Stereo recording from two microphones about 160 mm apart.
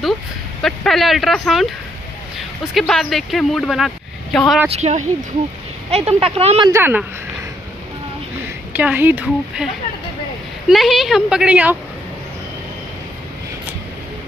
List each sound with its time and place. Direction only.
0.6 s speech: centre (ahead or behind)
4.6 s speech: 45° right (ahead or behind)
6.7 s speech: 10° right (ahead or behind)
8.7 s speech: 10° right (ahead or behind)
10.7 s speech: centre (ahead or behind)